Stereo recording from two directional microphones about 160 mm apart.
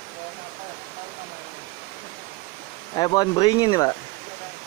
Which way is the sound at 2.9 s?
25° left (ahead or behind).